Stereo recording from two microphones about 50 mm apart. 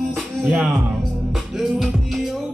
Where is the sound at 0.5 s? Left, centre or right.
Centre.